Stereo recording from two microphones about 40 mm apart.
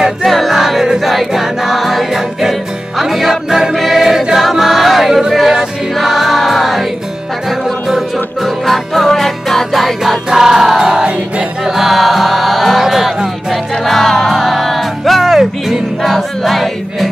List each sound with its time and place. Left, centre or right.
0.2 s music: centre
0.9 s choir: centre
1.8 s music: centre
3.4 s choir: centre
5.3 s music: centre
8.6 s music: centre
10.3 s music: centre
10.9 s music: right
11.6 s music: centre
12.8 s speech: centre
13.5 s music: centre